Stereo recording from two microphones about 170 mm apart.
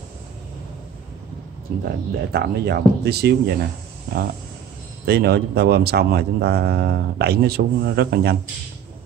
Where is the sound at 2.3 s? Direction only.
75° right (ahead or behind).